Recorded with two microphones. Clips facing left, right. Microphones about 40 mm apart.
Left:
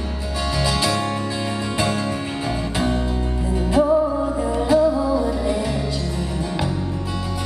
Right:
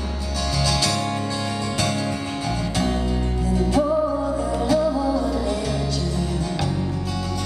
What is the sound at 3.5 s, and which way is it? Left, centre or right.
Music, centre.